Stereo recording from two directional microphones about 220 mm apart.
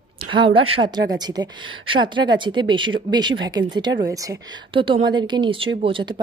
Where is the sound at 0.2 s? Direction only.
25° right (ahead or behind).